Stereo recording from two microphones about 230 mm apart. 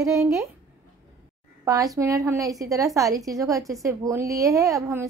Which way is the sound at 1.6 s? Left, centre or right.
Centre.